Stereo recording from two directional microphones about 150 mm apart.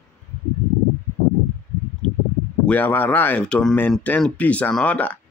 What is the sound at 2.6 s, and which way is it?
Speech, 10° left (ahead or behind).